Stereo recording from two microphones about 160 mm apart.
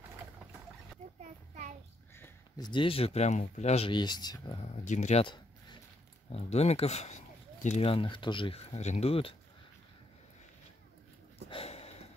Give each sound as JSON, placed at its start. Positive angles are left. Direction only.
{"t": 1.2, "sound": "child singing", "side_deg": -50}
{"t": 2.5, "sound": "speech", "side_deg": 30}
{"t": 4.6, "sound": "speech", "side_deg": 45}
{"t": 5.2, "sound": "a sound", "side_deg": 30}
{"t": 6.3, "sound": "speech", "side_deg": 40}
{"t": 11.4, "sound": "a sound", "side_deg": 35}